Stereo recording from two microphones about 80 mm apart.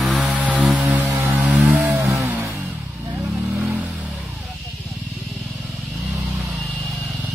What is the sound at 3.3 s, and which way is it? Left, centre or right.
Vehicle, centre.